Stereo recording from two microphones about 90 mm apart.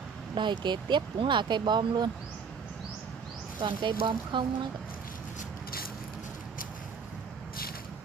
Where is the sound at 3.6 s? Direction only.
60° right (ahead or behind).